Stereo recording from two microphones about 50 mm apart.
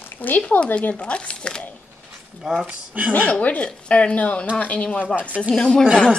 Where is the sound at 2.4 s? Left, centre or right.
Centre.